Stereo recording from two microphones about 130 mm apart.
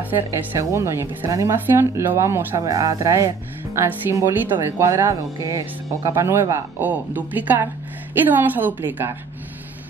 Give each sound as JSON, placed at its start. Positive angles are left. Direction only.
{"t": 0.3, "sound": "speech", "side_deg": -25}
{"t": 6.8, "sound": "a woman's voice", "side_deg": -15}